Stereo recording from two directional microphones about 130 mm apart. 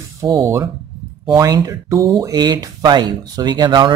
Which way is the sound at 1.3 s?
25° right (ahead or behind).